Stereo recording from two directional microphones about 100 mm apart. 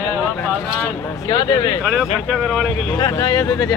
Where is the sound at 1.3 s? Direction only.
45° left (ahead or behind).